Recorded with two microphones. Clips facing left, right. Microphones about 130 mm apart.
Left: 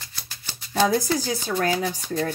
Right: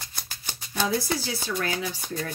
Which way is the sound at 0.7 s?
45° left (ahead or behind).